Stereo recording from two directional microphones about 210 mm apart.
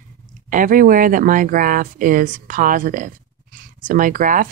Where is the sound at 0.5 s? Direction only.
40° right (ahead or behind).